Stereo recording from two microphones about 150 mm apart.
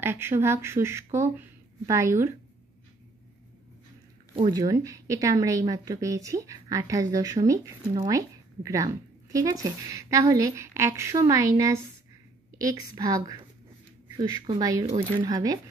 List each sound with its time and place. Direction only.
0.0 s speech: 15° right (ahead or behind)
4.5 s a woman's voice: 25° right (ahead or behind)